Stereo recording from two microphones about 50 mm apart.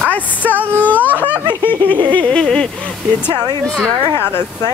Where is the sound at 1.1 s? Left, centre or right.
Right.